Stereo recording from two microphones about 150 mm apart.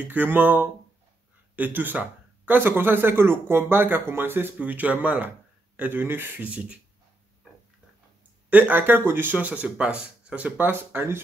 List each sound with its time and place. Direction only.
0.1 s speech: 10° right (ahead or behind)
8.5 s speech: 10° right (ahead or behind)